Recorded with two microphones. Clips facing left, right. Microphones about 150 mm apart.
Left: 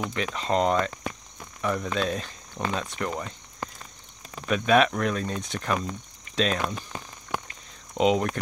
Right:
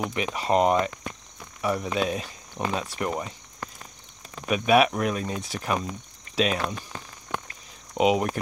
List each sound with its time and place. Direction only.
0.1 s speech: 15° right (ahead or behind)
4.5 s speech: 10° right (ahead or behind)
7.3 s a sound: 5° left (ahead or behind)
8.0 s speech: 10° right (ahead or behind)